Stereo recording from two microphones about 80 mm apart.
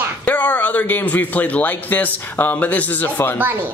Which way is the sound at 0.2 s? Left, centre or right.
Left.